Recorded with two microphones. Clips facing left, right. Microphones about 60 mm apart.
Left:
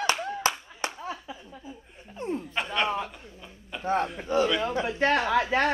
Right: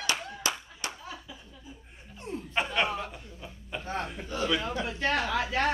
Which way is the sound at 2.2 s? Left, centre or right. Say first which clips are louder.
Left 7 dB; left.